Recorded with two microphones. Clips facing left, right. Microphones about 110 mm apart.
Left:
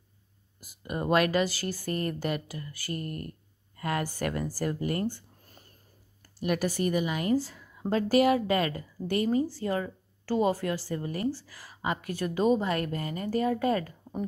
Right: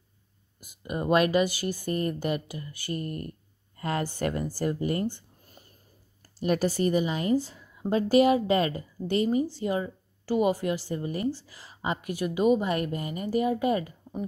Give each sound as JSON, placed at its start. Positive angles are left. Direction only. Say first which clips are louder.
{"t": 0.6, "sound": "a woman's voice", "louder": "right 1 dB", "side_deg": -20}
{"t": 6.4, "sound": "a woman's voice", "louder": "right 3 dB", "side_deg": -30}